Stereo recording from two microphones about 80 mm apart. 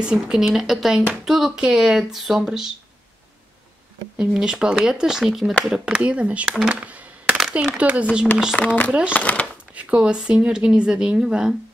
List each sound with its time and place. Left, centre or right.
0.0 s speech: centre
4.2 s speech: centre
6.6 s music: centre
7.3 s speech: centre
8.5 s speech: centre
9.8 s speech: centre